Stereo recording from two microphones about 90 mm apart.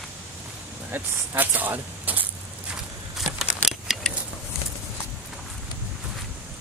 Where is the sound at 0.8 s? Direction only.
20° right (ahead or behind).